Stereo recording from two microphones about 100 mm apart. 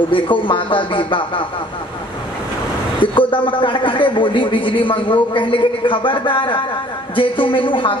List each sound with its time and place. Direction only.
0.1 s a man's voice: 55° left (ahead or behind)
3.0 s a man's voice: 55° left (ahead or behind)